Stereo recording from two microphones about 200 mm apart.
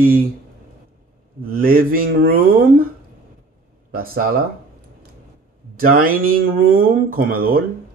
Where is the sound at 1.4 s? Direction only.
45° right (ahead or behind).